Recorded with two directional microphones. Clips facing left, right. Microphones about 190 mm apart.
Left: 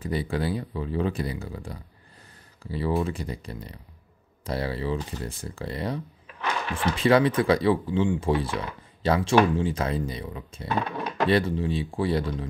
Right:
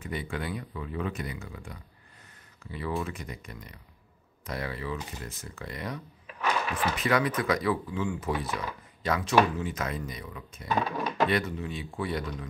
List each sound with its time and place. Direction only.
0.0 s speech: 35° left (ahead or behind)
10.7 s a sound: centre (ahead or behind)
11.2 s speech: 30° left (ahead or behind)